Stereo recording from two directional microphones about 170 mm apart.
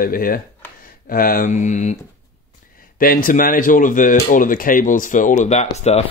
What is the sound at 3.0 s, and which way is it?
Speech, 55° left (ahead or behind).